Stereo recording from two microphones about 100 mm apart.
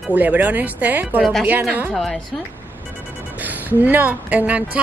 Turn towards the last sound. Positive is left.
turn(degrees=-15)  # may be behind; listen again after turning